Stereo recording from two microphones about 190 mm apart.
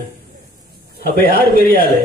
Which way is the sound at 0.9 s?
50° left (ahead or behind).